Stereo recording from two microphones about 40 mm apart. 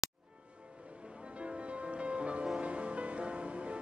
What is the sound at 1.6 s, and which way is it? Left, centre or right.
Music, right.